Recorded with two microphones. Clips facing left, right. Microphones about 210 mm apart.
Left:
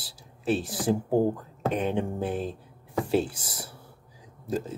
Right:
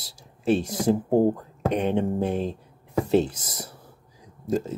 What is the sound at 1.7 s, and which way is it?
Speech, 5° left (ahead or behind).